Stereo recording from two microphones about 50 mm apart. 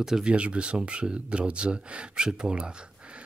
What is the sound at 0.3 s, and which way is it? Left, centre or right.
Speech, right.